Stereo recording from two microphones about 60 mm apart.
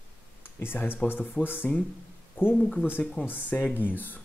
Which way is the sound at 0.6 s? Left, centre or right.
Left.